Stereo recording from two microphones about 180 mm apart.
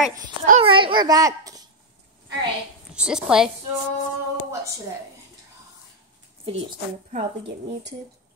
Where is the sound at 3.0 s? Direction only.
5° right (ahead or behind).